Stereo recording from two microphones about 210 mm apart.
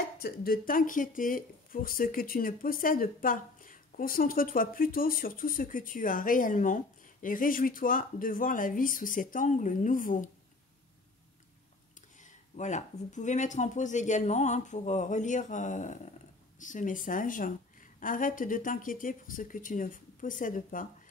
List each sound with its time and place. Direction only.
0.2 s speech: 45° left (ahead or behind)
12.2 s speech: 35° left (ahead or behind)